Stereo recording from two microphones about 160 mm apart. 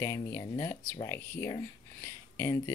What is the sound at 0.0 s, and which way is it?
Speech, 15° left (ahead or behind).